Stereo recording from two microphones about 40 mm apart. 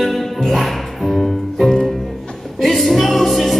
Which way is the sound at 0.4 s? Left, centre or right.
Centre.